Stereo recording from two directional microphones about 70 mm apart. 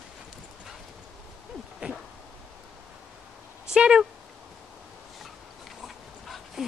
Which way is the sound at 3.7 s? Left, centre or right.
Centre.